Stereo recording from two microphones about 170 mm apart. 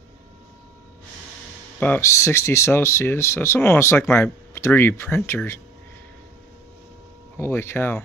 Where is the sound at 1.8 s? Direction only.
15° left (ahead or behind).